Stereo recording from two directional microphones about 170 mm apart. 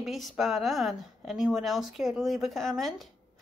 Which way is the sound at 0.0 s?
Centre (ahead or behind).